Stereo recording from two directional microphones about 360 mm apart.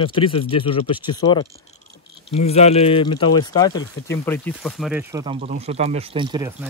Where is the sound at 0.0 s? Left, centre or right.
Centre.